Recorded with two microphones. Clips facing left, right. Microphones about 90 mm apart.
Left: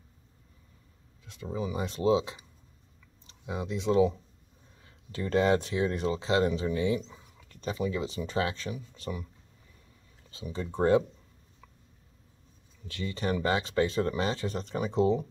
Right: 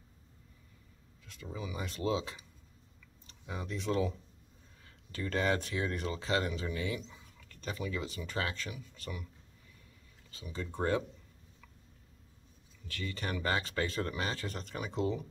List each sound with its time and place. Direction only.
1.2 s speech: 25° left (ahead or behind)
3.4 s speech: 20° left (ahead or behind)
10.3 s speech: 25° left (ahead or behind)
13.0 s speech: 25° left (ahead or behind)